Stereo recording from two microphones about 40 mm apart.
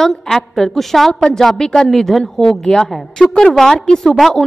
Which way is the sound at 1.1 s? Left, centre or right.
Centre.